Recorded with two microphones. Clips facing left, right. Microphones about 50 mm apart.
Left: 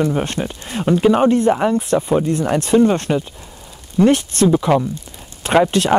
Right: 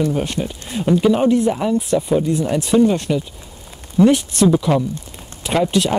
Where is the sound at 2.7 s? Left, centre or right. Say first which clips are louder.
Left 1 dB; left.